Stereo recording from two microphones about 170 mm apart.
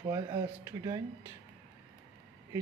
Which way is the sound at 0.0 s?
20° right (ahead or behind).